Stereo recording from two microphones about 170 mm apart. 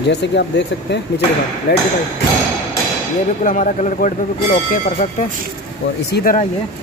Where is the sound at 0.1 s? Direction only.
90° left.